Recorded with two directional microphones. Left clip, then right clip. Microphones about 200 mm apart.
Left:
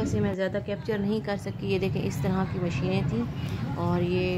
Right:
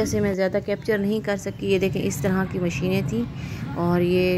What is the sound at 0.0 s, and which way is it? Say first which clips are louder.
A woman's voice: right 6 dB; 25° right (ahead or behind).